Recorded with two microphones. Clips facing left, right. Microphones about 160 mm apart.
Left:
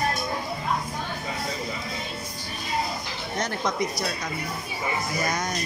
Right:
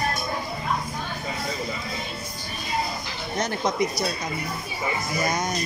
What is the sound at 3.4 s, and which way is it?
Speech, 20° right (ahead or behind).